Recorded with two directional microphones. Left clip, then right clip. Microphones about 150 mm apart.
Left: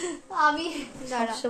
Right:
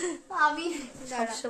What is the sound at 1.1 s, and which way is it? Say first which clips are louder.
Speech: left 3 dB; centre (ahead or behind).